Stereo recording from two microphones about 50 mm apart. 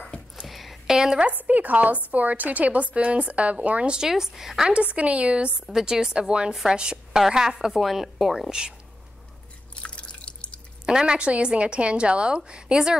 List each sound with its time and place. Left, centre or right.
0.5 s a sound: centre
1.2 s a woman's voice: right; by 4.6 s centre
4.6 s a woman's voice: right
5.7 s a woman's voice: centre
8.5 s a woman's voice: centre
9.8 s drip: left
10.9 s a woman's voice: centre